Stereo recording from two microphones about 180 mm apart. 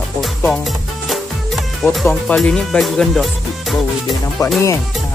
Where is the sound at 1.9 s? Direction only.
5° left (ahead or behind).